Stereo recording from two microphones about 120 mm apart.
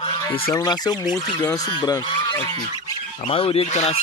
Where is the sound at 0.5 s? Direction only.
35° left (ahead or behind).